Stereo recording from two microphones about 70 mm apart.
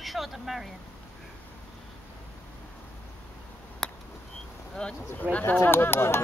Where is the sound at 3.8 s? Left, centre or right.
Centre.